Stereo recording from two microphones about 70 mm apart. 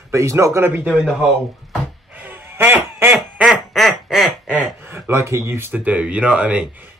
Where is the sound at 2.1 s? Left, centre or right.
Right.